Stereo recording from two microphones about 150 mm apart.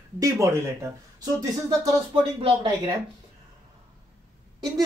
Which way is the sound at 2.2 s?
35° right (ahead or behind).